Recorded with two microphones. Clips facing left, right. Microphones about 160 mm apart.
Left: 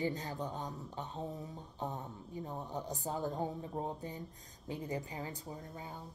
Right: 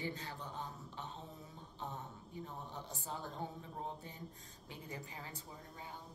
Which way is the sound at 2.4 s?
40° left (ahead or behind).